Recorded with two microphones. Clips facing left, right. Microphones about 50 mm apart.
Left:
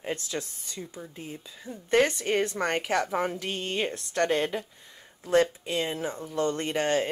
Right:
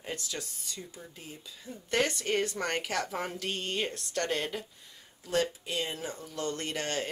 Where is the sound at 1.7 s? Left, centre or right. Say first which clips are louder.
Left 6 dB; left.